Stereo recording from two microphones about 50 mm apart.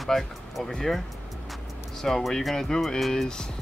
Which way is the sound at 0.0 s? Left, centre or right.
Centre.